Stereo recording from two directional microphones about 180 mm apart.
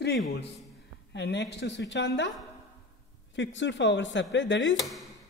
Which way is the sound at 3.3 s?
90° left.